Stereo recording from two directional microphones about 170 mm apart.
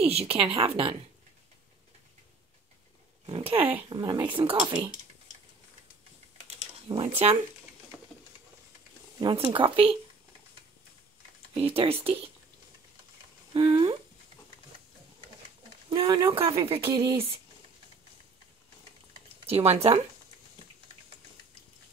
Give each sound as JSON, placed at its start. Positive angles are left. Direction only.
{"t": 0.0, "sound": "speech", "side_deg": -35}
{"t": 3.3, "sound": "speech", "side_deg": -30}
{"t": 3.5, "sound": "speech", "side_deg": -10}
{"t": 3.9, "sound": "speech", "side_deg": -25}
{"t": 6.9, "sound": "speech", "side_deg": -30}
{"t": 9.2, "sound": "speech", "side_deg": -25}
{"t": 11.5, "sound": "speech", "side_deg": -35}
{"t": 13.5, "sound": "speech", "side_deg": -30}
{"t": 15.9, "sound": "speech", "side_deg": -25}
{"t": 16.9, "sound": "speech", "side_deg": -20}
{"t": 19.4, "sound": "speech", "side_deg": -35}